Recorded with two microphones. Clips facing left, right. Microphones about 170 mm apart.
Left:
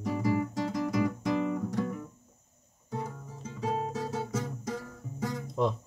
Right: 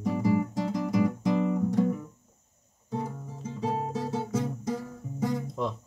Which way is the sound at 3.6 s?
25° right (ahead or behind).